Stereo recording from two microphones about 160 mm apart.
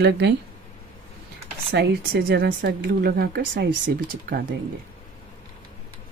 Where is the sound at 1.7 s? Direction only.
85° right.